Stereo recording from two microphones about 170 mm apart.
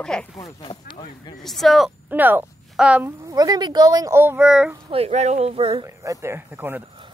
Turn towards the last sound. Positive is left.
turn(degrees=-10)  # may be behind; listen again after turning